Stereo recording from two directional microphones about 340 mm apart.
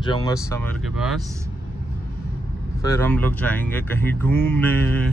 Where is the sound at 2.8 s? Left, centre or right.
Centre.